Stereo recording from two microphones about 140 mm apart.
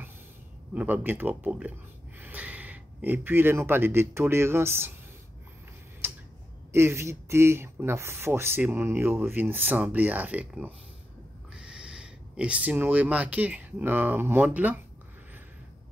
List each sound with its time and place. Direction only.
0.7 s speech: 10° right (ahead or behind)
6.0 s tick-tock: 15° right (ahead or behind)
6.7 s speech: 20° right (ahead or behind)